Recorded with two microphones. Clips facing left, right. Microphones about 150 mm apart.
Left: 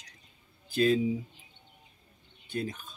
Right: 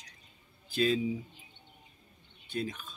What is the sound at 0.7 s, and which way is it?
Speech, 45° left (ahead or behind).